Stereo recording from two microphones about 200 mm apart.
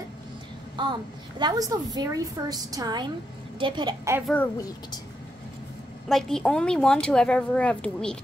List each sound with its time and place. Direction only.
0.8 s a woman's voice: 20° right (ahead or behind)
4.3 s a woman's voice: 10° left (ahead or behind)
6.0 s a woman's voice: centre (ahead or behind)